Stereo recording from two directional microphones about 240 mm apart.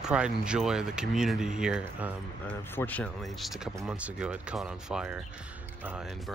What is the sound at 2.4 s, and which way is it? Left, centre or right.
Speech, centre.